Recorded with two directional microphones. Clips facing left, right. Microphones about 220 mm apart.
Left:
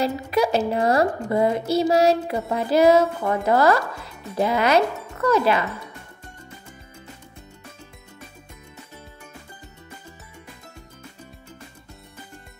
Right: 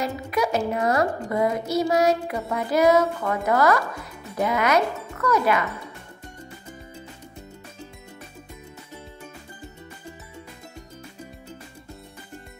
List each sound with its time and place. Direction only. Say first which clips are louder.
0.0 s speech: left 4 dB; 30° left (ahead or behind)